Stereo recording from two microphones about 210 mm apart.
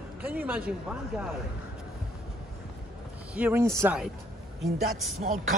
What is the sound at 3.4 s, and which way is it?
Speech, 10° right (ahead or behind).